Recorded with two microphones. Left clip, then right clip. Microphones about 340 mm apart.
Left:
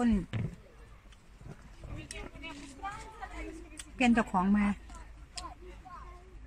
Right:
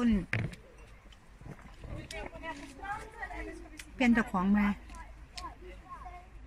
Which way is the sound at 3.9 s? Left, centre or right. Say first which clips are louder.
Left 1 dB; centre.